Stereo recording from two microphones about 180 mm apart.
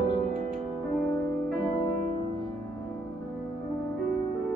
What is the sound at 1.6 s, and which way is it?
Music, 25° left (ahead or behind).